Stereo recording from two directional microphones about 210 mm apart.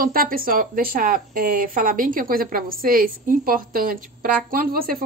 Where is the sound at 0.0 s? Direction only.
45° right (ahead or behind).